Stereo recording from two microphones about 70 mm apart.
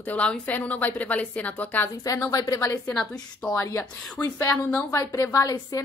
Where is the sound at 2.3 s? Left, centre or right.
Left.